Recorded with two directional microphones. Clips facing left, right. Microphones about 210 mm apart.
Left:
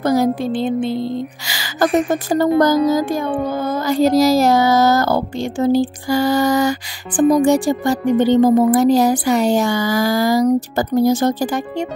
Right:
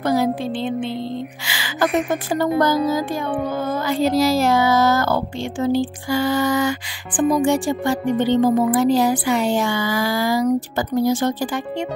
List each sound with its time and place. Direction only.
0.0 s music: 40° left (ahead or behind)
1.5 s speech: 40° left (ahead or behind)